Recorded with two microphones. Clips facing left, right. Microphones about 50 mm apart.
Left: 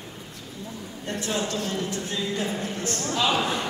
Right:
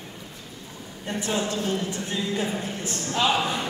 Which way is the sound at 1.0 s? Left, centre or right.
Centre.